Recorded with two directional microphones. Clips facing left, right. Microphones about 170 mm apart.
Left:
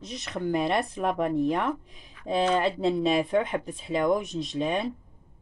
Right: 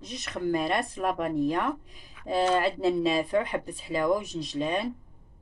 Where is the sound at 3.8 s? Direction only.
20° left (ahead or behind).